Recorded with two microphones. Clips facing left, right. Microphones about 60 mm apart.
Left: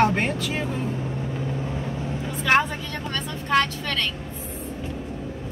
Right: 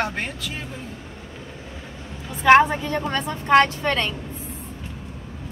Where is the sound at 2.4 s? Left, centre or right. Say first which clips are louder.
Right 7 dB; right.